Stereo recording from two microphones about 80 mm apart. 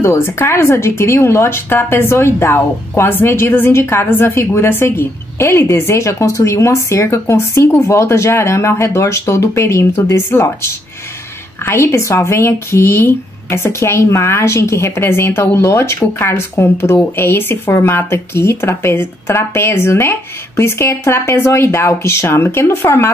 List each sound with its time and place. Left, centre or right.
0.0 s speech: left